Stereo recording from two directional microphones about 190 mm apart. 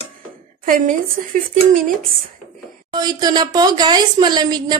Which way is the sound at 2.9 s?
20° right (ahead or behind).